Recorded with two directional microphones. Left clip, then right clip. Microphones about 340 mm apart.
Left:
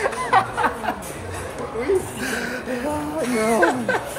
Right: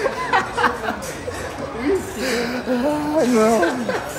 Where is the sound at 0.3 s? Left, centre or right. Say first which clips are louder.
Left 1 dB; centre.